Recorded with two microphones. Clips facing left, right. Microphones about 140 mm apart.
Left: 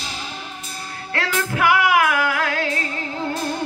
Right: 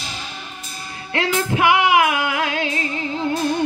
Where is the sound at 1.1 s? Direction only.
20° right (ahead or behind).